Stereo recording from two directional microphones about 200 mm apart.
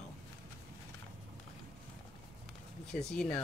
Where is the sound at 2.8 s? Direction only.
5° left (ahead or behind).